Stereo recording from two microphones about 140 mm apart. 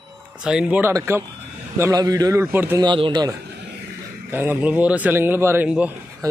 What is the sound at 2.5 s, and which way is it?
Speech, 15° right (ahead or behind).